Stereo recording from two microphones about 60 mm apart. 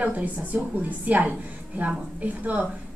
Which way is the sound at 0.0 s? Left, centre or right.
Right.